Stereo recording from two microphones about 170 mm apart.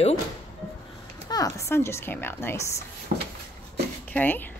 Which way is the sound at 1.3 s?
20° left (ahead or behind).